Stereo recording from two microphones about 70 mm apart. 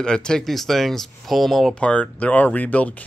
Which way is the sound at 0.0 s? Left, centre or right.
Centre.